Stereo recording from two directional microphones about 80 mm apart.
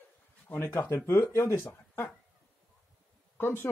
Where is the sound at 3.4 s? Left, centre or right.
Left.